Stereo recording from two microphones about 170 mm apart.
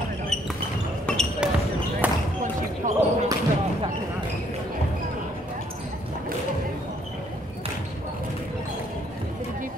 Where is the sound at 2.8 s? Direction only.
50° right (ahead or behind).